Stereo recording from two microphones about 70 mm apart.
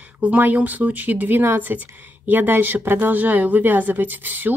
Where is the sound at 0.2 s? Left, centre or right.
Right.